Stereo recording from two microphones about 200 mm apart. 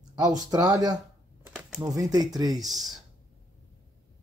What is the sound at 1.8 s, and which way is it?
Speech, 15° right (ahead or behind).